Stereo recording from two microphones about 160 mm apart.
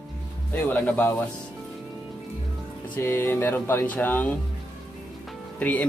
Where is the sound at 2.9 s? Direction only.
15° left (ahead or behind).